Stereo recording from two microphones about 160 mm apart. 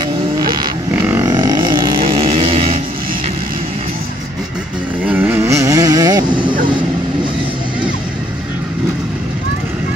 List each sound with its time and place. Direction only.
0.9 s roaring cats: 10° right (ahead or behind)
1.2 s a sound: 25° right (ahead or behind)
2.0 s vehicle: 35° right (ahead or behind)
5.0 s vehicle: 10° right (ahead or behind)